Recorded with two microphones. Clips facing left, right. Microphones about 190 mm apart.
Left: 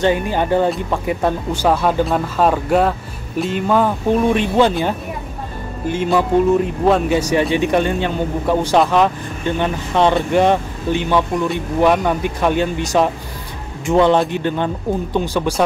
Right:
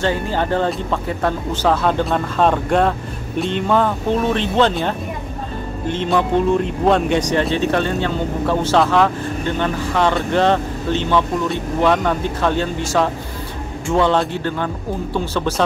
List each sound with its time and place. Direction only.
0.0 s speech: 15° left (ahead or behind)